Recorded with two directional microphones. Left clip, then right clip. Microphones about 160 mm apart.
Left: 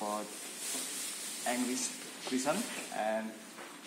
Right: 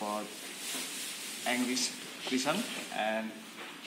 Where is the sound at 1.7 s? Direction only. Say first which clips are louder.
Right 4 dB; 10° left (ahead or behind).